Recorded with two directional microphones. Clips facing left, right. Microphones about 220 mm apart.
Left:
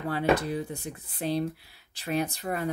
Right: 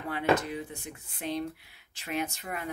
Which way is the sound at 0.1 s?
35° left (ahead or behind).